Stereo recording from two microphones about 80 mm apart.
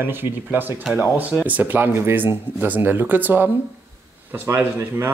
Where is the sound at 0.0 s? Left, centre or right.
Right.